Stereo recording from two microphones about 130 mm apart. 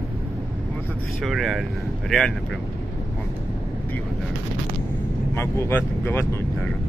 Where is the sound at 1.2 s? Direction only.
Centre (ahead or behind).